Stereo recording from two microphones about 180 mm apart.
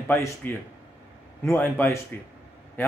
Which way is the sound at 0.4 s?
10° left (ahead or behind).